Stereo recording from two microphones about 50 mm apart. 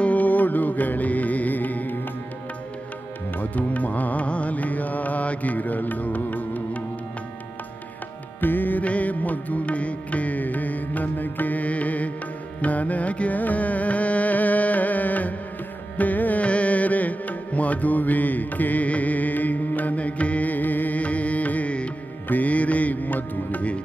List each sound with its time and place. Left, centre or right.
0.0 s music: left
3.3 s music: left
8.4 s music: left